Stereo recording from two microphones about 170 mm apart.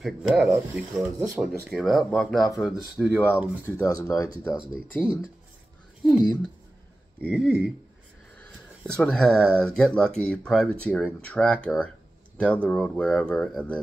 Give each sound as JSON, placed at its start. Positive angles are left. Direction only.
{"t": 0.0, "sound": "speech", "side_deg": 0}
{"t": 3.6, "sound": "speech", "side_deg": 20}
{"t": 4.6, "sound": "speech", "side_deg": -5}
{"t": 8.8, "sound": "speech", "side_deg": 5}